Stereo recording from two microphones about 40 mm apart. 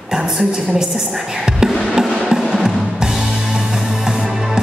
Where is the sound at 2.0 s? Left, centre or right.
Centre.